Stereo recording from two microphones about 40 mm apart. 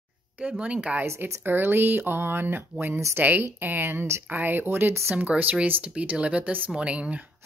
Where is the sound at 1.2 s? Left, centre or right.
Right.